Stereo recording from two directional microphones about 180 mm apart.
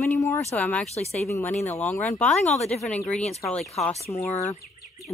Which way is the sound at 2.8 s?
5° left (ahead or behind).